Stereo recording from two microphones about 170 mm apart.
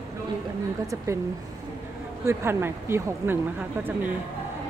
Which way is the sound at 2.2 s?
15° right (ahead or behind).